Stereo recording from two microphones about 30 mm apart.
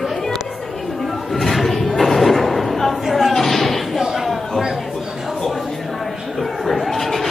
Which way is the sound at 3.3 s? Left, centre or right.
Centre.